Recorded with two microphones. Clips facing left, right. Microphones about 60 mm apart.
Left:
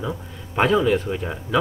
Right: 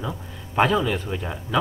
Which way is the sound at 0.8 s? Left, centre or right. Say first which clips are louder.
Left 6 dB; left.